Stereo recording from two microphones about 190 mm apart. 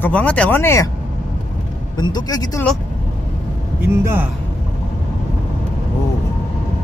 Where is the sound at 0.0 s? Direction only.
10° left (ahead or behind).